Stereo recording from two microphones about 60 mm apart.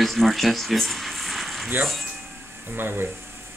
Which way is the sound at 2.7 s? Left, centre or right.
Right.